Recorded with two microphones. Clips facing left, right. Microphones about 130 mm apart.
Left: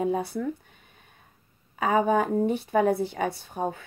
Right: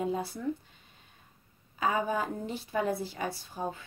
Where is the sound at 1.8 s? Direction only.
60° left (ahead or behind).